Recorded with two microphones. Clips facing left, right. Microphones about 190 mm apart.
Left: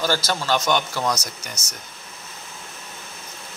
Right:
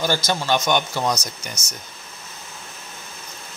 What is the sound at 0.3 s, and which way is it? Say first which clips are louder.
Speech: right 2 dB; 20° right (ahead or behind).